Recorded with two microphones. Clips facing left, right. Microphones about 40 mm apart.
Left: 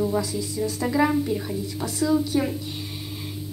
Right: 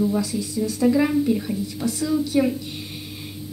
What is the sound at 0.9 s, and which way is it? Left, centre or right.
Speech, centre.